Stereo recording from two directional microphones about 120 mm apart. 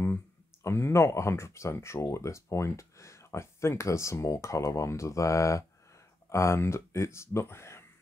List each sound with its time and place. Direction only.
0.7 s speech: 20° left (ahead or behind)